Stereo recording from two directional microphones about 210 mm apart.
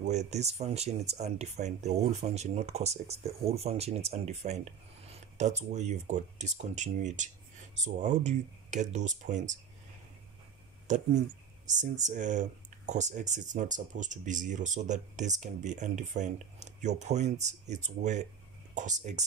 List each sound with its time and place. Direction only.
0.0 s speech: 35° right (ahead or behind)
10.9 s speech: 35° right (ahead or behind)